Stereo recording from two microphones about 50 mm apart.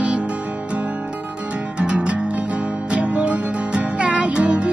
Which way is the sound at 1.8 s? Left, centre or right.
Right.